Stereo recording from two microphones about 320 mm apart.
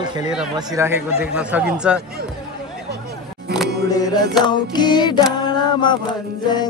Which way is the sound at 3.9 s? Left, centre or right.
Centre.